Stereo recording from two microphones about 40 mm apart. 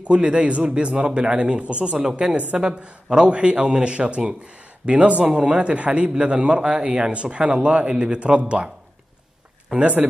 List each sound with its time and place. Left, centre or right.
0.0 s a man's voice: right
9.8 s speech: right